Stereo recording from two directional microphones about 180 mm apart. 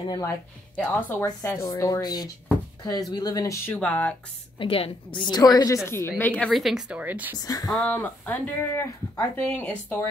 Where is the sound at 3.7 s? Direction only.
10° left (ahead or behind).